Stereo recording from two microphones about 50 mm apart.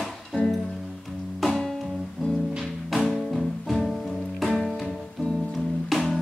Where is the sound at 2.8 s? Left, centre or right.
Centre.